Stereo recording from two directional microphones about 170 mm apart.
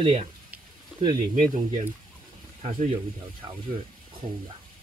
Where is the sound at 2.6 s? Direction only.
35° right (ahead or behind).